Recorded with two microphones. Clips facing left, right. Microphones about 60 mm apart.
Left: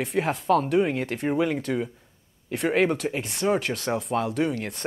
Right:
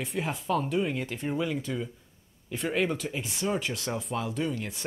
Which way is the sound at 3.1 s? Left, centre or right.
Left.